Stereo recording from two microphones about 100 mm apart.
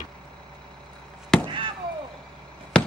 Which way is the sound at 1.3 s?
5° left (ahead or behind).